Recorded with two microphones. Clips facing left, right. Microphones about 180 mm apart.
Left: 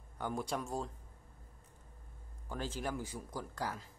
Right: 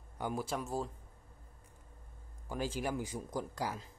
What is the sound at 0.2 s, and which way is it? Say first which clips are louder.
Speech: right 1 dB; 5° right (ahead or behind).